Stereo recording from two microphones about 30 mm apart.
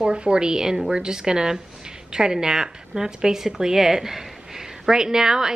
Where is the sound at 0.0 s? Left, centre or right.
Right.